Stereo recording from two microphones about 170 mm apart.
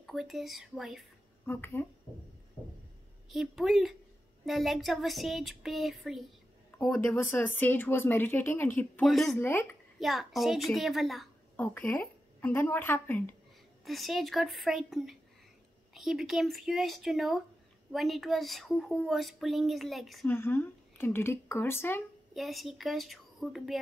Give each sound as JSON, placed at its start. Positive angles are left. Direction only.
{"t": 0.0, "sound": "speech", "side_deg": 0}
{"t": 1.4, "sound": "speech", "side_deg": 15}
{"t": 3.3, "sound": "speech", "side_deg": 0}
{"t": 9.4, "sound": "speech", "side_deg": 15}
{"t": 9.9, "sound": "speech", "side_deg": 0}
{"t": 11.5, "sound": "a woman's voice", "side_deg": 10}
{"t": 13.8, "sound": "speech", "side_deg": 0}
{"t": 20.2, "sound": "speech", "side_deg": 15}
{"t": 22.3, "sound": "a child's voice", "side_deg": 0}